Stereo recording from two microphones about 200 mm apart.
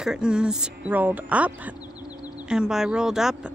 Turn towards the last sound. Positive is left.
turn(degrees=0)  # may be behind; listen again after turning